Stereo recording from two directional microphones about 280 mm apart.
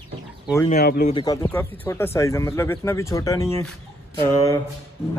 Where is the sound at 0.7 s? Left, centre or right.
Left.